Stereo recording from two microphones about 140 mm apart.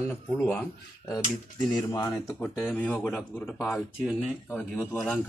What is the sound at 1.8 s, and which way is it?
Speech, 25° left (ahead or behind).